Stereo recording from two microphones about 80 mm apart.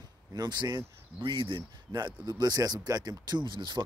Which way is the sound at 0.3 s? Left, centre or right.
Right.